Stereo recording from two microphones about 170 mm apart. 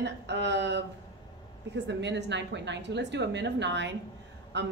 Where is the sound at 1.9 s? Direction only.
90° right.